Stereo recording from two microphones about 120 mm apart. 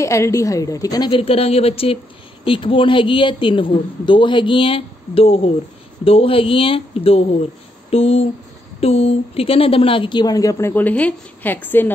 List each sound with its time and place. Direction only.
0.0 s a woman's voice: 25° left (ahead or behind)
1.1 s speech: 55° left (ahead or behind); by 10.7 s 30° left (ahead or behind)
10.7 s a woman's voice: 15° left (ahead or behind)